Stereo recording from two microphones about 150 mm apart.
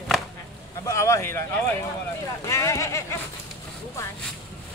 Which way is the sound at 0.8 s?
20° left (ahead or behind).